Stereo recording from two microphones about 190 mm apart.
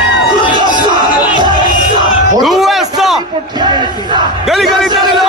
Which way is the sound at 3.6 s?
25° right (ahead or behind).